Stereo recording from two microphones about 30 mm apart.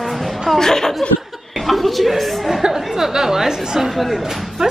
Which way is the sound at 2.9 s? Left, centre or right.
Centre.